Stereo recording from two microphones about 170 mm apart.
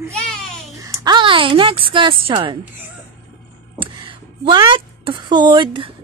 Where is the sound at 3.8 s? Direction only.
30° right (ahead or behind).